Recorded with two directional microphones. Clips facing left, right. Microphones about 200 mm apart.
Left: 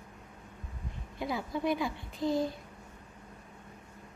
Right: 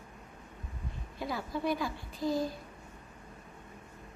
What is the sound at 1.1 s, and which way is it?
A woman's voice, 20° left (ahead or behind).